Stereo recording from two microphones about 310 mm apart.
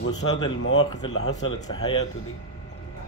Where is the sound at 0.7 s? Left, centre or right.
Centre.